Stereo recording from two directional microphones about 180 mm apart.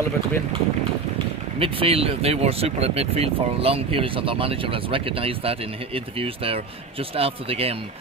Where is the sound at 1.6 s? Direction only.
30° right (ahead or behind).